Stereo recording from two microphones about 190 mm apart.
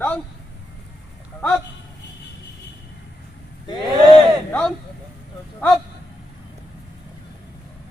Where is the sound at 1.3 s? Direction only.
5° left (ahead or behind).